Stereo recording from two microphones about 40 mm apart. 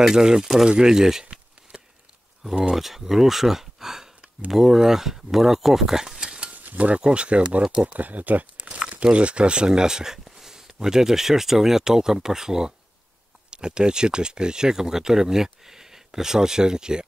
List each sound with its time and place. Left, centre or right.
0.0 s speech: centre
1.7 s chop: right
2.7 s speech: centre
6.1 s stir: right
6.5 s mechanisms: right
7.0 s speech: right
7.8 s speech: right
8.6 s crumpling: right
9.0 s speech: right